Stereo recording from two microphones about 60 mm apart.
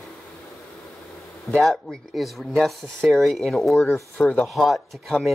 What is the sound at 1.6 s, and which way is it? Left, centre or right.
Speech, centre.